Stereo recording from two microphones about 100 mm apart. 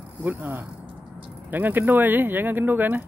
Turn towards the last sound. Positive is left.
turn(degrees=-20)  # may be behind; listen again after turning